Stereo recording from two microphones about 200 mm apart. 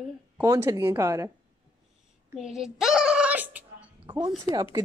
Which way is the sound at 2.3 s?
5° right (ahead or behind).